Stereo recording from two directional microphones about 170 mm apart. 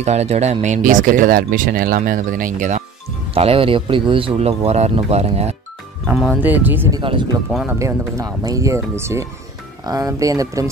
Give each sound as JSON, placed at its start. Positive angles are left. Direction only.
{"t": 0.0, "sound": "speech", "side_deg": -40}
{"t": 3.3, "sound": "speech", "side_deg": -35}
{"t": 6.1, "sound": "speech", "side_deg": -5}
{"t": 6.9, "sound": "speech", "side_deg": -30}
{"t": 7.5, "sound": "speech", "side_deg": -5}
{"t": 7.8, "sound": "speech", "side_deg": -20}